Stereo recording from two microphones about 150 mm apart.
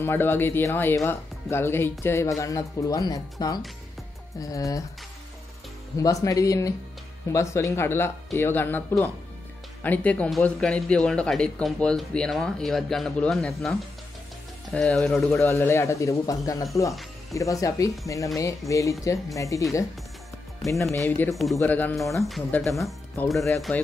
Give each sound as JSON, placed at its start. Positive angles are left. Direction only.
{"t": 0.0, "sound": "speech", "side_deg": 15}
{"t": 5.9, "sound": "speech", "side_deg": 20}
{"t": 15.3, "sound": "speech", "side_deg": 15}
{"t": 20.8, "sound": "speech", "side_deg": 20}
{"t": 22.5, "sound": "speech", "side_deg": 0}